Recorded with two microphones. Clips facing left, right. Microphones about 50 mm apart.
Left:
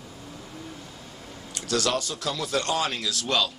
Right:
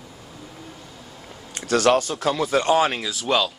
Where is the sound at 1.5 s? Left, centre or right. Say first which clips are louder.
Right 8 dB; right; by 3.5 s centre.